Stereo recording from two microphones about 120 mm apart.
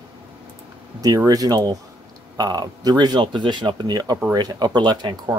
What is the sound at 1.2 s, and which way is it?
Speech, 30° right (ahead or behind).